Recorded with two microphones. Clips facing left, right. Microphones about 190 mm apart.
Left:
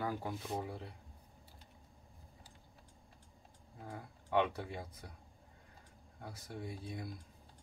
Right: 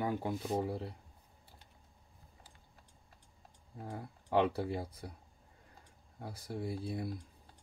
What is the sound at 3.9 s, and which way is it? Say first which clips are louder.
Speech: right 3 dB; 25° right (ahead or behind).